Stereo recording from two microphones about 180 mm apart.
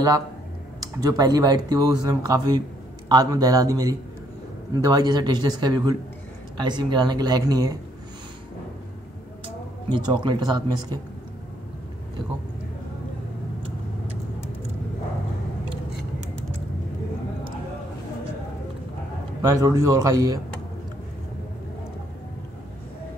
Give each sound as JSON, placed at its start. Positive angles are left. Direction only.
{"t": 0.7, "sound": "speech", "side_deg": -20}
{"t": 9.8, "sound": "speech", "side_deg": -25}
{"t": 19.4, "sound": "speech", "side_deg": -20}